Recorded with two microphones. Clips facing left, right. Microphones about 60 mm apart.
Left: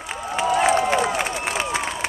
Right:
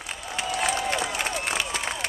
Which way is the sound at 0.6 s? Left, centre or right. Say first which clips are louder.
Left 7 dB; left.